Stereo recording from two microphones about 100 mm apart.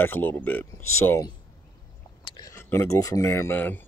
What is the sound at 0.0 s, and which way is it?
Speech, 20° left (ahead or behind).